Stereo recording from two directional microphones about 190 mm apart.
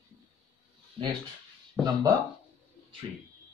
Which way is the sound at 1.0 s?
30° right (ahead or behind).